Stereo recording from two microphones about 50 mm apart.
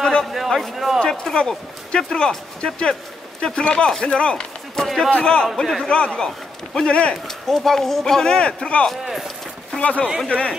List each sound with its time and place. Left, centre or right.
0.0 s a sound: centre
0.3 s a man's voice: centre
0.9 s speech: centre
4.8 s a man's voice: centre
5.1 s a man's voice: centre
5.6 s a man's voice: centre
5.9 s a man's voice: left